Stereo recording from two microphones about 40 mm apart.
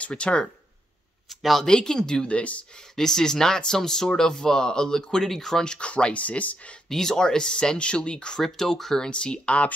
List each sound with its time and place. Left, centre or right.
0.1 s speech: left
1.3 s speech: centre
1.7 s speech: centre
2.2 s speech: left
2.7 s speech: centre
5.8 s speech: left
6.9 s speech: centre
8.4 s speech: centre
9.1 s speech: left